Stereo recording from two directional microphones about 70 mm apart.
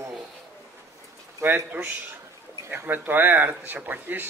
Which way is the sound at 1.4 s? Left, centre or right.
Right.